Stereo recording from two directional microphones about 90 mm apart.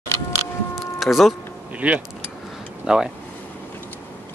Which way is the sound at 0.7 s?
Centre (ahead or behind).